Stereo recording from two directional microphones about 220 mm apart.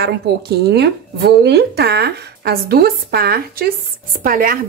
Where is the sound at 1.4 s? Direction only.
50° right (ahead or behind).